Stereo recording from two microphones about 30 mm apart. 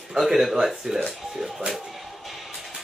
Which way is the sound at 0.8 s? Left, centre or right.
Right.